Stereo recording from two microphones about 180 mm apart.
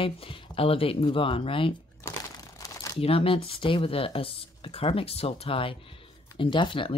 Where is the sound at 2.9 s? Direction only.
30° left (ahead or behind).